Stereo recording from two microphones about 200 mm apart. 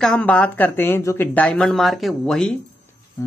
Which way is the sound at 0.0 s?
5° left (ahead or behind).